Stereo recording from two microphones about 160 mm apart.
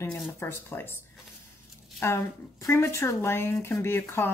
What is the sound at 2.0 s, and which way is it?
A woman's voice, 20° left (ahead or behind).